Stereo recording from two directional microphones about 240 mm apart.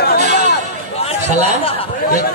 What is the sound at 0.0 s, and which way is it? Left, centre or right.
Chatter, left.